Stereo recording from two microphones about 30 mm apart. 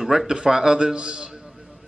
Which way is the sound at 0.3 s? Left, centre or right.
Right.